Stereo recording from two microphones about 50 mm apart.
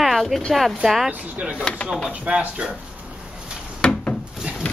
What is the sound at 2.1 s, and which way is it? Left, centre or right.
Speech, right.